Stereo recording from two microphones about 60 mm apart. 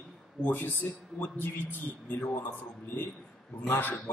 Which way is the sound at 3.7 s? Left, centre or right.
Left.